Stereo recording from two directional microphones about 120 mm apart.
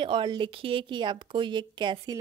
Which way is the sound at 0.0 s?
40° right (ahead or behind).